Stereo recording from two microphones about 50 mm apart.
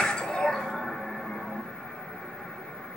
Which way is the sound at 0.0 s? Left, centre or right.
Centre.